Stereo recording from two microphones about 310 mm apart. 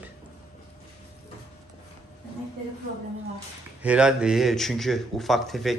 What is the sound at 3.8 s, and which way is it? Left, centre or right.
Speech, centre.